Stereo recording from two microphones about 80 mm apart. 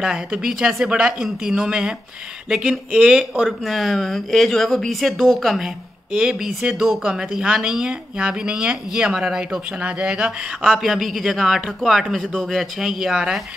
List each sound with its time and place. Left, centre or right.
0.0 s speech: centre